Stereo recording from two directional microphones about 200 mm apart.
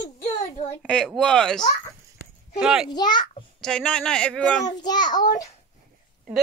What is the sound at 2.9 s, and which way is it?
Speech, 20° left (ahead or behind).